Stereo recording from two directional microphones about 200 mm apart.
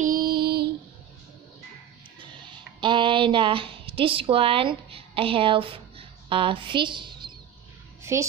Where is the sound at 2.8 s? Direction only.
25° right (ahead or behind).